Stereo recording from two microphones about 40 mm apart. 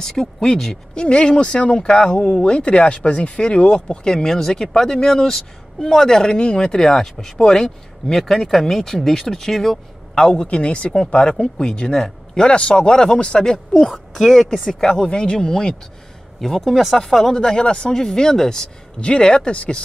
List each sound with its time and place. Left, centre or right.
0.2 s speech: centre
0.9 s speech: left; by 9.8 s centre
10.1 s speech: centre
13.8 s speech: centre
16.3 s speech: centre; by 19.7 s left